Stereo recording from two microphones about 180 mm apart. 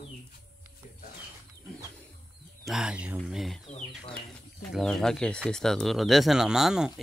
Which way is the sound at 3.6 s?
35° left (ahead or behind).